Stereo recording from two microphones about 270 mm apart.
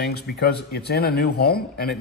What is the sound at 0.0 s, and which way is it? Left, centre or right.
Speech, left.